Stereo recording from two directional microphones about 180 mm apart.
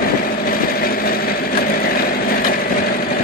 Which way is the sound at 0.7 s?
55° left (ahead or behind).